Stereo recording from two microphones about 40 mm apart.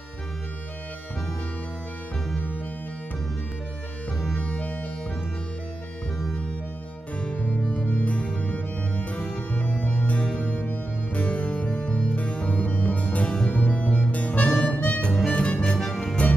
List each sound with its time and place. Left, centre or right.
4.4 s music: left
7.2 s music: left
15.3 s music: left